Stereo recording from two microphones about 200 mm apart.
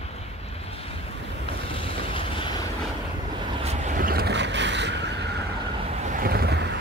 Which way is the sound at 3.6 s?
35° right (ahead or behind).